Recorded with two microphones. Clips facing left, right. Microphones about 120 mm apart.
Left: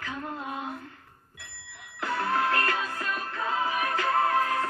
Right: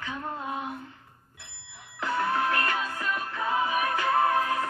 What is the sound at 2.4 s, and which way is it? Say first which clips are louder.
Music: left 1 dB; 35° left (ahead or behind).